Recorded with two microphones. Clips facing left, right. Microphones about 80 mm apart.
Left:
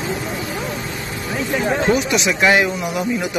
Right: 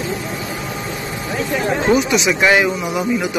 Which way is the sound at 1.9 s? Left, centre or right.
Centre.